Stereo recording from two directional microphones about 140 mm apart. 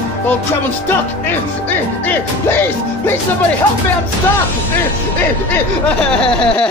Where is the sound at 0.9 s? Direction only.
15° left (ahead or behind).